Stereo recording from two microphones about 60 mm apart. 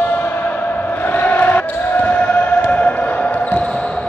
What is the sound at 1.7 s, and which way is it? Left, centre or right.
Basketball bounce, left.